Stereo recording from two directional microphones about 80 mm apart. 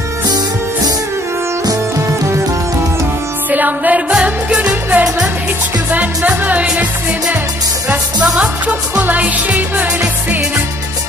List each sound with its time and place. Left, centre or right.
3.4 s music: right
8.4 s music: centre